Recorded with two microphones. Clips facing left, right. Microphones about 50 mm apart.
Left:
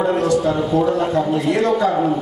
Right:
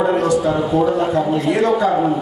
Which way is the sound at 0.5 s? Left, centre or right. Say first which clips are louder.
Right 1 dB; centre.